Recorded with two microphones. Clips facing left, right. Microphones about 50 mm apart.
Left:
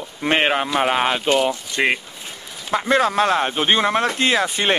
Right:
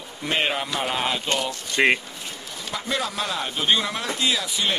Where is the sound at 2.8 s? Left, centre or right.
Left.